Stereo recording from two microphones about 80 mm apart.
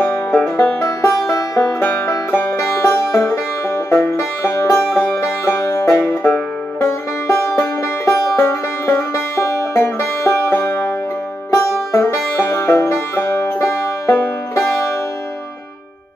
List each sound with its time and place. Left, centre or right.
0.0 s music: left
1.8 s music: left